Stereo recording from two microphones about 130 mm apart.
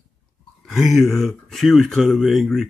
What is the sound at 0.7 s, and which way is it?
Speech, centre (ahead or behind).